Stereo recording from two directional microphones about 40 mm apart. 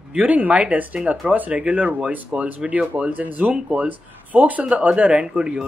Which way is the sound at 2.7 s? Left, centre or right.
Right.